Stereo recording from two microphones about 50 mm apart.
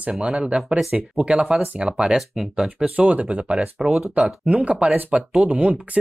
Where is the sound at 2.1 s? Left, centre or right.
Centre.